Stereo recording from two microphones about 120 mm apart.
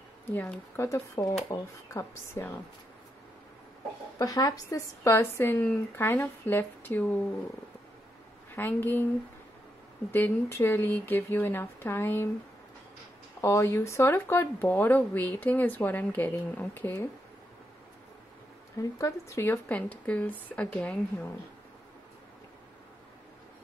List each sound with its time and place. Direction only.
0.3 s speech: 10° left (ahead or behind)
0.7 s speech: 25° left (ahead or behind)
4.2 s speech: 30° left (ahead or behind); by 7.2 s 15° left (ahead or behind)
8.5 s speech: 15° left (ahead or behind)
10.1 s speech: 20° left (ahead or behind)
13.4 s speech: 25° left (ahead or behind)
18.8 s speech: 25° left (ahead or behind)